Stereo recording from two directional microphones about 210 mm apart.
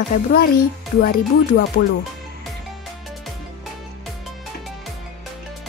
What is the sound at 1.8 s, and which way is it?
Speech, 50° left (ahead or behind).